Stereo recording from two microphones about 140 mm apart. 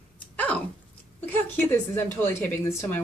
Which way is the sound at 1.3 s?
15° left (ahead or behind).